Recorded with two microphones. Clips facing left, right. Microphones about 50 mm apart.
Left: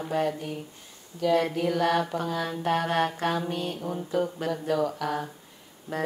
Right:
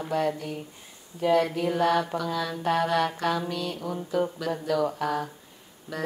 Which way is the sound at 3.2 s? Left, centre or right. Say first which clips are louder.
Even; left.